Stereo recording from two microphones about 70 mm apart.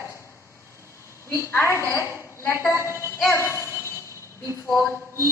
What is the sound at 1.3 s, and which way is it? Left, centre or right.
A woman's voice, left.